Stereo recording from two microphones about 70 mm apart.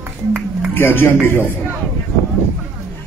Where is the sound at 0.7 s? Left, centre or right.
Left.